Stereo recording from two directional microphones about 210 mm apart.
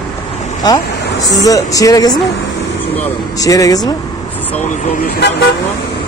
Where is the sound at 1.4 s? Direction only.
15° left (ahead or behind).